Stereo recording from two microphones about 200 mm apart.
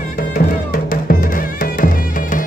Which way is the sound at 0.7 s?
45° left (ahead or behind).